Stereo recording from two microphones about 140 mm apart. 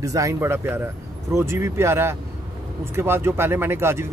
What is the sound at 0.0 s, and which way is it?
Speech, 25° right (ahead or behind).